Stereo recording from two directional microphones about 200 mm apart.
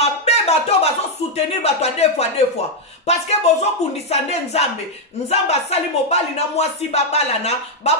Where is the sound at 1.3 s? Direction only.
30° left (ahead or behind).